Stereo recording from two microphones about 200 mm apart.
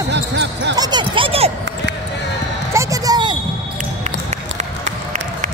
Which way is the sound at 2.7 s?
15° right (ahead or behind).